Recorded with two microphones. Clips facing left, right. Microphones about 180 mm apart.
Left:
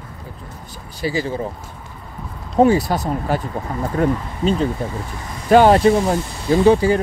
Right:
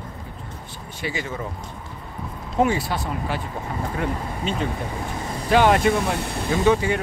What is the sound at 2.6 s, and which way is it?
Speech, 40° left (ahead or behind).